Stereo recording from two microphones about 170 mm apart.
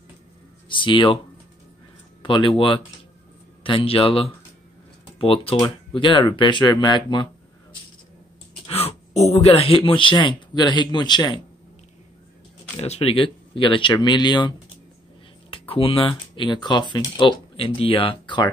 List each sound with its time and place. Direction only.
0.7 s speech: 30° left (ahead or behind)
2.2 s speech: 30° left (ahead or behind)
3.6 s speech: 30° left (ahead or behind)
8.6 s speech: 35° left (ahead or behind)
12.7 s speech: 35° left (ahead or behind)
15.5 s speech: 35° left (ahead or behind)